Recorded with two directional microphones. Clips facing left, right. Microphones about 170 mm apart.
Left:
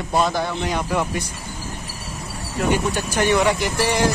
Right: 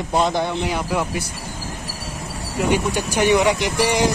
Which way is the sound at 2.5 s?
10° right (ahead or behind).